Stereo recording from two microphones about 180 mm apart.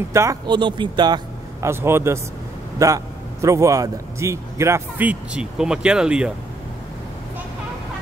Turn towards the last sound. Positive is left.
turn(degrees=-5)  # may be behind; listen again after turning